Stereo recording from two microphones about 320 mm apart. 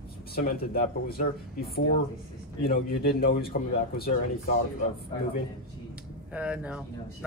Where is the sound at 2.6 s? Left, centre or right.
Left.